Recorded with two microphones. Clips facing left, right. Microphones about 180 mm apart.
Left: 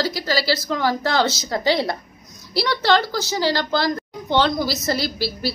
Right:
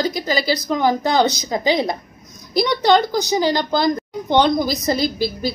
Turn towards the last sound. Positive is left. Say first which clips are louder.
# right 4 dB
turn(degrees=-20)  # may be behind; listen again after turning